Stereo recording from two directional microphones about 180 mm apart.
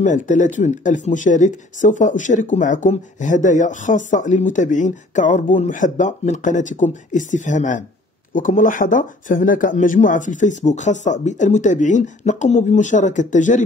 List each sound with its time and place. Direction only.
0.0 s speech: 45° left (ahead or behind)